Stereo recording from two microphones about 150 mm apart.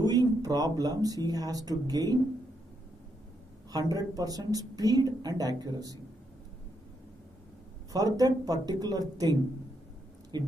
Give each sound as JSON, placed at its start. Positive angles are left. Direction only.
{"t": 0.0, "sound": "speech", "side_deg": -25}
{"t": 3.7, "sound": "a woman's voice", "side_deg": -25}
{"t": 7.9, "sound": "a woman's voice", "side_deg": -25}